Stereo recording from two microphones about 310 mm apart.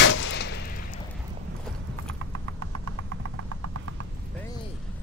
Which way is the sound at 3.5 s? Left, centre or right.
Right.